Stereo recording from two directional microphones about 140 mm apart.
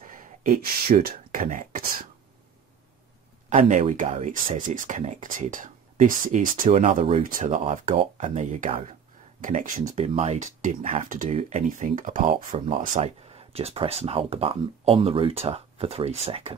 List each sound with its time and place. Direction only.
0.0 s speech: 75° right (ahead or behind)
3.4 s speech: 60° right (ahead or behind)
4.6 s speech: 70° right (ahead or behind)
6.7 s speech: 65° right (ahead or behind)
11.2 s speech: 50° right (ahead or behind); by 12.5 s 65° right (ahead or behind)
12.5 s speech: 50° right (ahead or behind)